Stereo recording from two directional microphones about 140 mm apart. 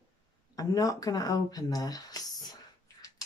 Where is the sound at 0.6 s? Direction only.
25° left (ahead or behind).